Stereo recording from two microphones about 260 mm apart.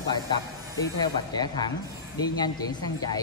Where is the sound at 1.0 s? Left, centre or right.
Centre.